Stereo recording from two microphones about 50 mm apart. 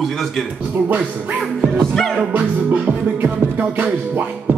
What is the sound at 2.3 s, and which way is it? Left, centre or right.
Music, right.